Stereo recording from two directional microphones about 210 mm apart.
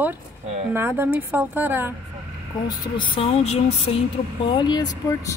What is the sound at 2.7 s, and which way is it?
Speech, 20° left (ahead or behind).